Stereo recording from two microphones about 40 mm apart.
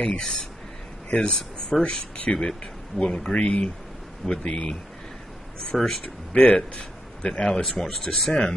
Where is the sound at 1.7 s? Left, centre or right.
Left.